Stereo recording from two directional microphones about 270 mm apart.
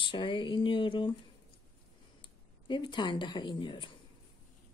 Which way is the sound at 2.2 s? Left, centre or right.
Centre.